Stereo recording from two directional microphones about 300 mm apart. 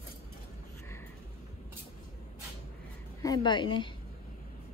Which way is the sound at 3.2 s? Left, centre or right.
Centre.